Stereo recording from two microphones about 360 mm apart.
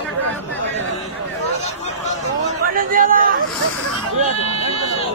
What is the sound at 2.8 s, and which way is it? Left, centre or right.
Chatter, right.